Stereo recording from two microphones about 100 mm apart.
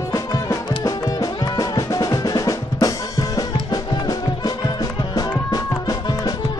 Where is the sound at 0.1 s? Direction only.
35° left (ahead or behind).